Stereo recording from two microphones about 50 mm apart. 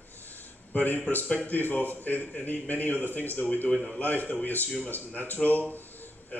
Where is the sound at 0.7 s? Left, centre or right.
Left.